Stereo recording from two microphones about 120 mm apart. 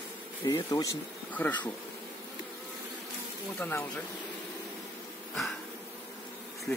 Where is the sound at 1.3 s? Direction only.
15° left (ahead or behind).